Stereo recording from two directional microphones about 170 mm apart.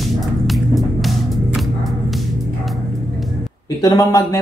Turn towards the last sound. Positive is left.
turn(degrees=20)  # may be behind; listen again after turning